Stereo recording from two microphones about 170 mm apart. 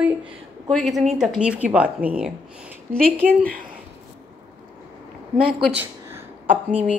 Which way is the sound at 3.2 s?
55° right (ahead or behind).